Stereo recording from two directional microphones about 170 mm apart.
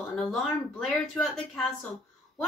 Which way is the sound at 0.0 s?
Centre (ahead or behind).